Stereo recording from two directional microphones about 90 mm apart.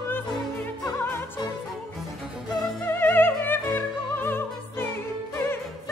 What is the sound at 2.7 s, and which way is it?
Music, 20° left (ahead or behind).